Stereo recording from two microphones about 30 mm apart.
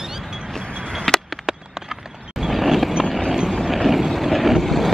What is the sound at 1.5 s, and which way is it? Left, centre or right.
Clip-clop, centre.